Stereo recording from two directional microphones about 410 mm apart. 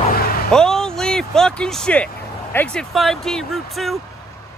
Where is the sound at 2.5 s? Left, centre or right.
Centre.